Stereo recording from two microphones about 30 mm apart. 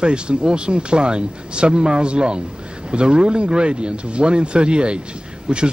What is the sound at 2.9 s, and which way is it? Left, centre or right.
Speech, right.